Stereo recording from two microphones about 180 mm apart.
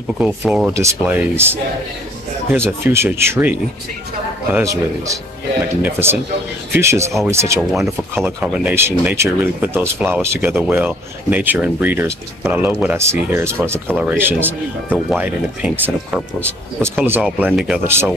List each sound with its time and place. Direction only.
0.2 s speech: 5° right (ahead or behind)
4.6 s speech: 15° right (ahead or behind)